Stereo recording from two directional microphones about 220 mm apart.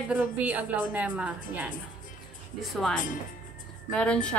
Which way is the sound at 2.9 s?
35° left (ahead or behind).